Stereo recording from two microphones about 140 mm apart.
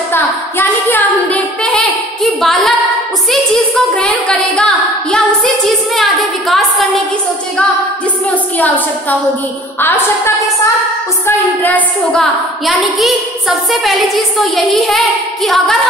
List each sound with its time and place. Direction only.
0.1 s singing: 15° left (ahead or behind)
3.9 s a woman's voice: 5° left (ahead or behind)
8.5 s a woman's voice: 10° left (ahead or behind)